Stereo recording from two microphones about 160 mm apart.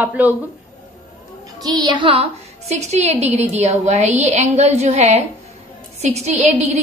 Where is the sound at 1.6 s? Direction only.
25° right (ahead or behind).